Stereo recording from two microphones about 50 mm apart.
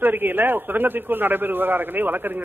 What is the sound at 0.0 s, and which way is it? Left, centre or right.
A man's voice, right.